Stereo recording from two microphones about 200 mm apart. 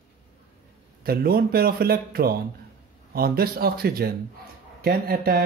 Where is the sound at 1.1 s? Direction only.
50° right (ahead or behind).